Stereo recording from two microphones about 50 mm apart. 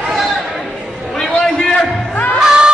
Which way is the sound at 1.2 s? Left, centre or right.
Centre.